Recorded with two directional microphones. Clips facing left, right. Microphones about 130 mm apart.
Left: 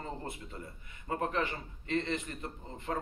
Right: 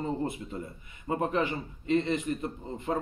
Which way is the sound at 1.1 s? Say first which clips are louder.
Right 5 dB; 15° right (ahead or behind).